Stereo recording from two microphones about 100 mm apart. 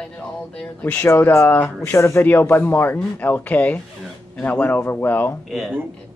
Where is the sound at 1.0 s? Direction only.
25° left (ahead or behind).